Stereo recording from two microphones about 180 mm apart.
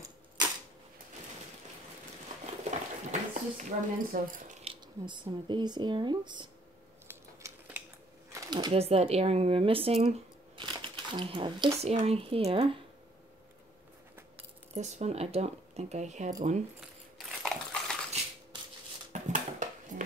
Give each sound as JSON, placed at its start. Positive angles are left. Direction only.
{"t": 2.7, "sound": "a sound", "side_deg": -40}
{"t": 4.6, "sound": "speech", "side_deg": -25}
{"t": 7.4, "sound": "a sound", "side_deg": -10}
{"t": 8.3, "sound": "speech", "side_deg": -25}
{"t": 14.7, "sound": "speech", "side_deg": -40}
{"t": 17.4, "sound": "dog", "side_deg": 5}
{"t": 19.1, "sound": "dishes", "side_deg": -45}